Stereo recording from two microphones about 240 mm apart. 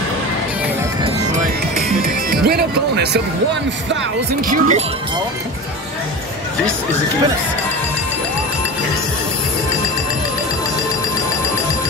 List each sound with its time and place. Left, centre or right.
2.0 s music: right
4.5 s speech: right